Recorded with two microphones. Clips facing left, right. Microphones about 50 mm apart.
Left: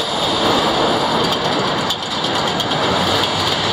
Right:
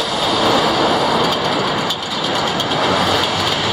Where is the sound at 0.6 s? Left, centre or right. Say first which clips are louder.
Right 1 dB; right.